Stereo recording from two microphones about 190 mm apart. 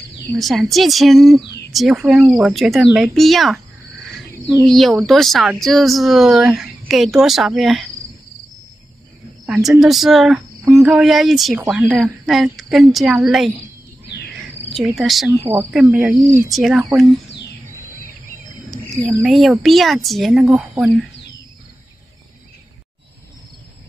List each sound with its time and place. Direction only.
0.4 s speech: centre (ahead or behind)
4.6 s speech: centre (ahead or behind)
9.5 s speech: centre (ahead or behind)
14.7 s speech: centre (ahead or behind)
17.3 s bird: 60° left (ahead or behind)
19.2 s speech: centre (ahead or behind)